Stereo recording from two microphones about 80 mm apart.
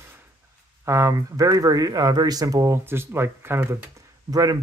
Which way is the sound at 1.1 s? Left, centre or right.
Right.